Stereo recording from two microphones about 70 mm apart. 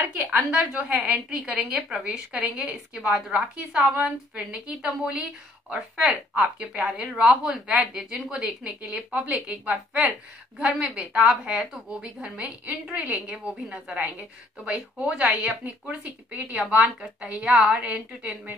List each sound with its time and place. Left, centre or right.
0.2 s a woman's voice: right; by 13.9 s centre
14.6 s speech: centre